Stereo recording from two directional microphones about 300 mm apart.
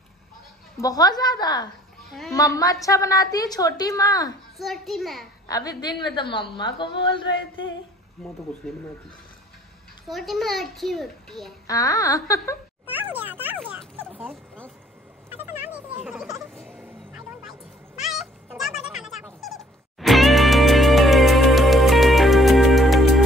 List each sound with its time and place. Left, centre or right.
0.7 s a woman's voice: centre
2.0 s speech: centre
2.3 s a woman's voice: centre
4.6 s a child's voice: centre
5.5 s a woman's voice: centre
8.2 s a child's voice: centre
10.0 s a child's voice: centre
11.6 s a woman's voice: centre
12.9 s a sound: centre
16.5 s cat: centre